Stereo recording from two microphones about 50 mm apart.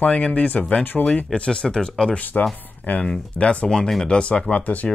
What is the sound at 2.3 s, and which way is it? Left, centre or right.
Speech, left.